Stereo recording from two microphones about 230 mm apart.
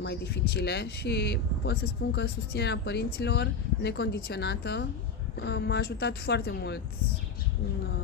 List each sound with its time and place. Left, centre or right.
0.0 s speech: left